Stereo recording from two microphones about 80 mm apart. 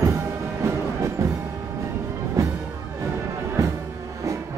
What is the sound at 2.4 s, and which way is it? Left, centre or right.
Music, right.